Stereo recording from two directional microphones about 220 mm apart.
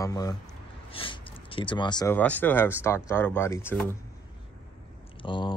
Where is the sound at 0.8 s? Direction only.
25° left (ahead or behind).